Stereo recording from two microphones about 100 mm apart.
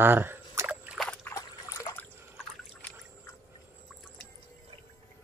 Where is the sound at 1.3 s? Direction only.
40° left (ahead or behind).